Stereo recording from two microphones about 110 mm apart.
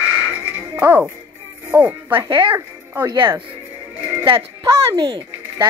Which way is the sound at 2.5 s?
25° right (ahead or behind).